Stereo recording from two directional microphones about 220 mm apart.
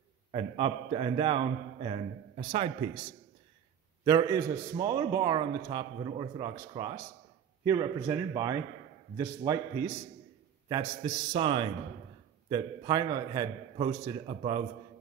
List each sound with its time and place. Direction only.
0.3 s a man's voice: 25° right (ahead or behind)
4.0 s a man's voice: 15° right (ahead or behind)